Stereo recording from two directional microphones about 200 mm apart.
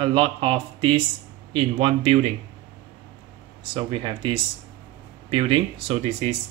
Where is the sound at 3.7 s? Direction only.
25° right (ahead or behind).